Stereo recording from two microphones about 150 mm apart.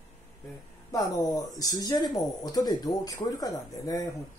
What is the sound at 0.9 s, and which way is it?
Speech, 25° left (ahead or behind).